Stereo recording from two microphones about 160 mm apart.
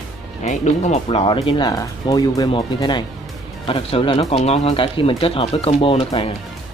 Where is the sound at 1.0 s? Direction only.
35° left (ahead or behind).